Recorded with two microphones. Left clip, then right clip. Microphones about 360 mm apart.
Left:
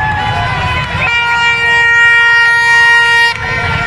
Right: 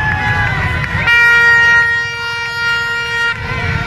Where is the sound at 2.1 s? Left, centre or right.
Left.